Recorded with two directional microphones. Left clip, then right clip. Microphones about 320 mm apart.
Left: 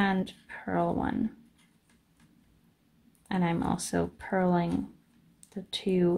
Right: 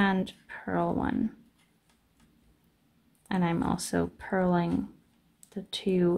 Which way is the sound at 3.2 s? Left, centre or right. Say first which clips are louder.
Right 1 dB; centre.